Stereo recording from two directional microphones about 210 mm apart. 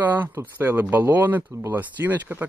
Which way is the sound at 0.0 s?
10° right (ahead or behind).